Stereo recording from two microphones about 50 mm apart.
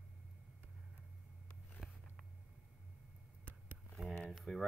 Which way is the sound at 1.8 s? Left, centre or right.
Centre.